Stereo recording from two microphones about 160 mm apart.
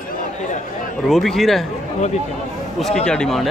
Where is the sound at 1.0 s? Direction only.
Centre (ahead or behind).